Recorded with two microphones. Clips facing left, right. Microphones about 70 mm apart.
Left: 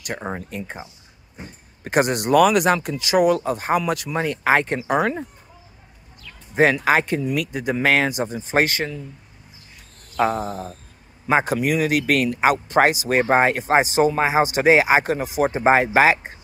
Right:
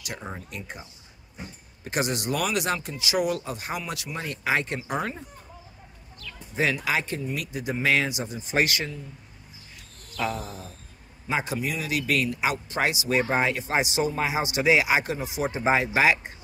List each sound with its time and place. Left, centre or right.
0.0 s speech: left
1.9 s speech: left
4.8 s speech: left
6.5 s speech: left
7.2 s speech: left
7.8 s speech: left
10.1 s a sound: left
10.4 s speech: left
11.5 s speech: left
12.4 s speech: left
15.1 s speech: left
15.5 s speech: left
16.1 s speech: left